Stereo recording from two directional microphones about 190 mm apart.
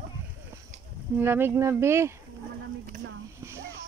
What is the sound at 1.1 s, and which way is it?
Speech, 10° right (ahead or behind).